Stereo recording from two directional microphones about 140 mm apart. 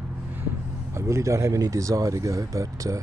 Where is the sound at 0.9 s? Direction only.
20° right (ahead or behind).